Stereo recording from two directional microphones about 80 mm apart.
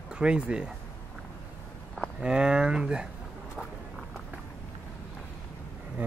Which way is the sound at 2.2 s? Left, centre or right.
Centre.